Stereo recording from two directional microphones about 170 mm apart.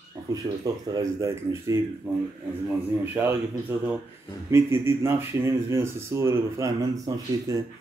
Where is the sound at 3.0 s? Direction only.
15° right (ahead or behind).